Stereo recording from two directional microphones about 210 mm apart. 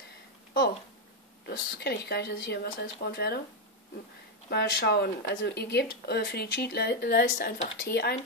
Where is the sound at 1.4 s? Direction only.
50° left (ahead or behind).